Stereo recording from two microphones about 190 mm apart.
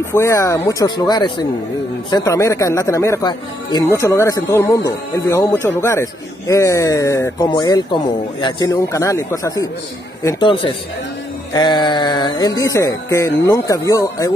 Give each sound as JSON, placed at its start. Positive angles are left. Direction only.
{"t": 0.1, "sound": "music", "side_deg": 15}
{"t": 2.0, "sound": "speech", "side_deg": 20}
{"t": 10.2, "sound": "music", "side_deg": 25}